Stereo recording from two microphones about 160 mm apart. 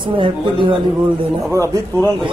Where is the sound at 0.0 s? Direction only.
30° right (ahead or behind).